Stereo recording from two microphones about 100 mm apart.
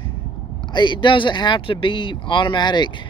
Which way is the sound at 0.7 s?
50° left (ahead or behind).